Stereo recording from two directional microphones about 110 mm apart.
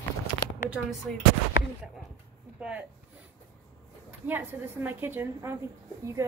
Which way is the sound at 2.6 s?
10° right (ahead or behind).